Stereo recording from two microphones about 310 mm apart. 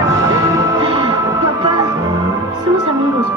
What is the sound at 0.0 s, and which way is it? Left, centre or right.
Music, centre.